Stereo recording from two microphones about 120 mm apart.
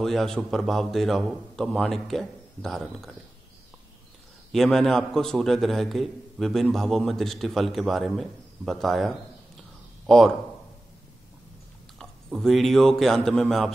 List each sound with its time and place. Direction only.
0.0 s a man's voice: 5° left (ahead or behind)
2.8 s speech: 10° right (ahead or behind)
4.5 s a man's voice: 5° left (ahead or behind)
12.0 s speech: centre (ahead or behind)